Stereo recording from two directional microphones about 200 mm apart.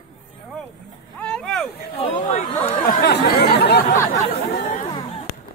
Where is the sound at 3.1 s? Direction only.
55° left (ahead or behind).